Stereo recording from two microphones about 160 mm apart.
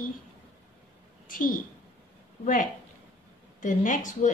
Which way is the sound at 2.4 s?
55° left (ahead or behind).